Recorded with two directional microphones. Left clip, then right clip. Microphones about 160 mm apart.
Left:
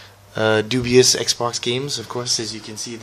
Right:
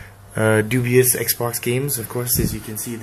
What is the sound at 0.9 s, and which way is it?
Speech, 35° left (ahead or behind).